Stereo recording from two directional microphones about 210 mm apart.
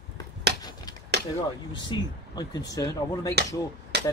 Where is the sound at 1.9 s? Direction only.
20° left (ahead or behind).